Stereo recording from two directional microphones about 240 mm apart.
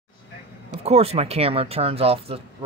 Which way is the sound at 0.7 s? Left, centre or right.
Right.